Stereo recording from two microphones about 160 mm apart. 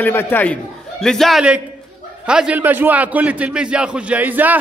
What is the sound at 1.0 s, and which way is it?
A woman's voice, centre (ahead or behind).